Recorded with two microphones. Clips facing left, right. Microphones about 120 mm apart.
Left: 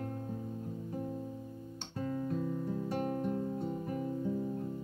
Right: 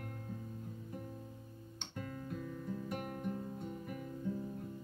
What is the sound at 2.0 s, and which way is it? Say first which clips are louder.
Music: left 9 dB; 25° left (ahead or behind).